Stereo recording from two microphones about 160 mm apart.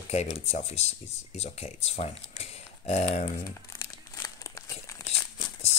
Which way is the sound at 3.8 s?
20° left (ahead or behind).